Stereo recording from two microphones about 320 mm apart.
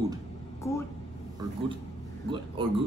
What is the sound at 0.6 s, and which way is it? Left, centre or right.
Speech, centre.